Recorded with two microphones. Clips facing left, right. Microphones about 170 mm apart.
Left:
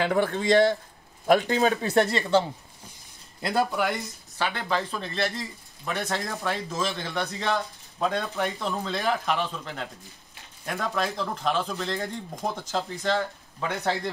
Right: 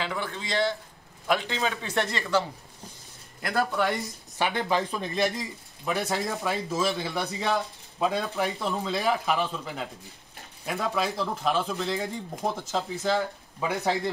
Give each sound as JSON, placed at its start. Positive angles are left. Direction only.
{"t": 0.0, "sound": "speech", "side_deg": 55}
{"t": 3.7, "sound": "speech", "side_deg": 5}
{"t": 4.4, "sound": "speech", "side_deg": -15}
{"t": 5.9, "sound": "speech", "side_deg": -5}